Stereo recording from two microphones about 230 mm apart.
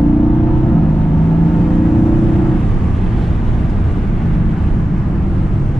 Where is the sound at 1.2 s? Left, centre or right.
Centre.